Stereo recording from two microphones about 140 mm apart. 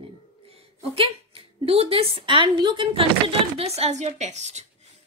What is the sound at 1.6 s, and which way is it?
Speech, 40° right (ahead or behind).